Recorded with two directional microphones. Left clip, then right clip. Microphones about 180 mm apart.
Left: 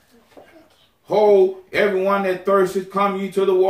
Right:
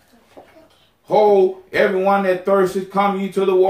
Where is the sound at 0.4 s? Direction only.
15° right (ahead or behind).